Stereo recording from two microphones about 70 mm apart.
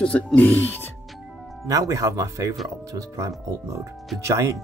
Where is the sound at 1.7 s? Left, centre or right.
Right.